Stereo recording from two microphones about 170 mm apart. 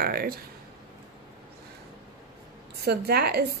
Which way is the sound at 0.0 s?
60° right (ahead or behind).